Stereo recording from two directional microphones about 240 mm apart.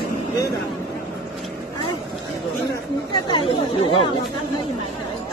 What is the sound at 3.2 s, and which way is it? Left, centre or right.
Speech, left.